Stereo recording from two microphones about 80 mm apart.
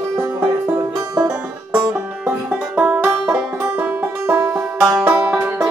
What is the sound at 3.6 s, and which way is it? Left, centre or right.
Music, right.